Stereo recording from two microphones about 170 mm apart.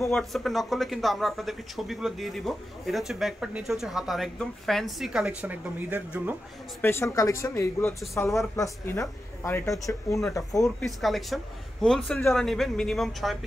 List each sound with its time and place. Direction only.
0.1 s speech: centre (ahead or behind)
6.8 s speech: 15° left (ahead or behind)
10.6 s speech: centre (ahead or behind)